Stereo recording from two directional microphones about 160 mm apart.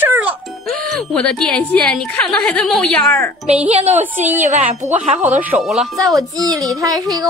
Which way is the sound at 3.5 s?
40° right (ahead or behind).